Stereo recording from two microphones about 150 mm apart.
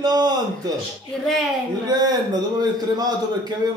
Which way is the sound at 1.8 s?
25° right (ahead or behind).